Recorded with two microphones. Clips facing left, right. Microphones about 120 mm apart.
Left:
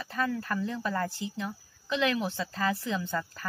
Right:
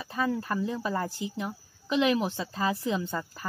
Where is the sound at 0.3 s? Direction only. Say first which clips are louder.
Right 2 dB; 20° right (ahead or behind).